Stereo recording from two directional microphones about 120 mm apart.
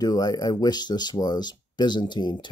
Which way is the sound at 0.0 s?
30° left (ahead or behind).